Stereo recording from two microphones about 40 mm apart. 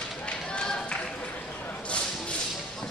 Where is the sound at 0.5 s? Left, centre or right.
Left.